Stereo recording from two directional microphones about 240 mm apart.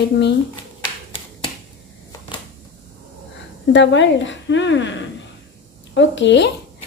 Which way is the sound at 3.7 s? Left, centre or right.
Left.